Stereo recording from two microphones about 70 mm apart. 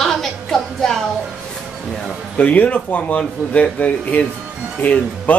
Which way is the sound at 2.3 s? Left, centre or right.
Centre.